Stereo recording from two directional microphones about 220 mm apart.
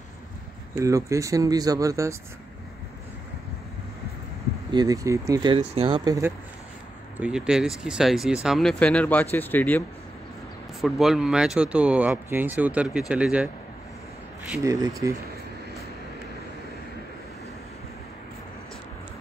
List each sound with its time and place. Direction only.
0.7 s speech: 15° right (ahead or behind)
4.7 s speech: 15° right (ahead or behind)
7.2 s speech: 5° right (ahead or behind)
14.5 s speech: 15° right (ahead or behind)